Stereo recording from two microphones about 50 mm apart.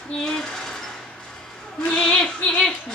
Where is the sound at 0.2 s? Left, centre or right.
Centre.